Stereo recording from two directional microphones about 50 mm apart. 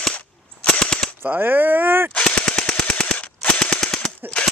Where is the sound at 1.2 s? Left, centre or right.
Right.